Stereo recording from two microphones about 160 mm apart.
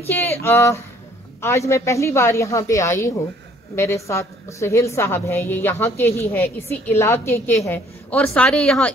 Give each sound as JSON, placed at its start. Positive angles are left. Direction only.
{"t": 0.1, "sound": "a woman's voice", "side_deg": 15}